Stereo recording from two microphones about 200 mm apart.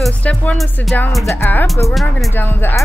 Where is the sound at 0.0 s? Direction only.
5° left (ahead or behind).